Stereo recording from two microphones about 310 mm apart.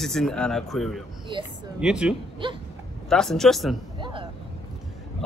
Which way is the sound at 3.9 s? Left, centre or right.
Centre.